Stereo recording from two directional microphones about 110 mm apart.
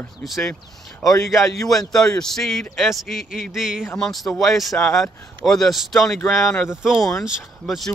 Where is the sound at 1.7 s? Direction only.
5° left (ahead or behind).